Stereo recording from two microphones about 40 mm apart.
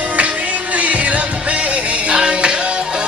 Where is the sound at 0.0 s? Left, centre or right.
Right.